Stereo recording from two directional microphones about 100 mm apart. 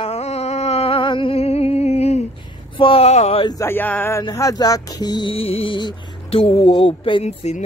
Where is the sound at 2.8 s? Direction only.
75° left (ahead or behind).